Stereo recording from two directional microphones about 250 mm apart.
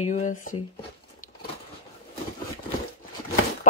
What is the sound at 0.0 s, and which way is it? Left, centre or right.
Speech, left.